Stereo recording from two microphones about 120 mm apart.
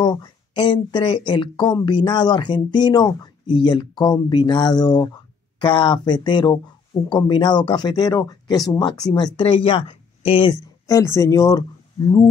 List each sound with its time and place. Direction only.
0.0 s speech: 40° left (ahead or behind)
10.9 s speech: 25° left (ahead or behind)